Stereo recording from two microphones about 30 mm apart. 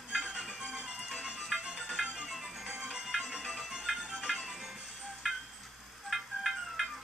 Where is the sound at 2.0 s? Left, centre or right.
Right.